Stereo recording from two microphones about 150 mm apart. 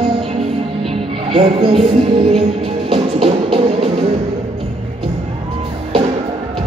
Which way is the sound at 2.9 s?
40° right (ahead or behind).